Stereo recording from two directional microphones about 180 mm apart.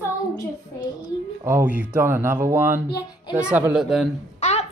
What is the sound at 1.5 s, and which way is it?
A woman's voice, 10° right (ahead or behind).